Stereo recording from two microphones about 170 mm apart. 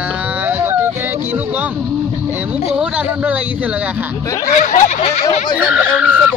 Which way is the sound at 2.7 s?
5° right (ahead or behind).